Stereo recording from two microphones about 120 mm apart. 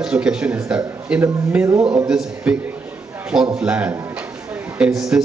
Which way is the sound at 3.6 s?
10° right (ahead or behind).